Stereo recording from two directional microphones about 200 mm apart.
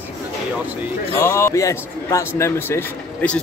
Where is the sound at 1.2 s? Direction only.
15° left (ahead or behind).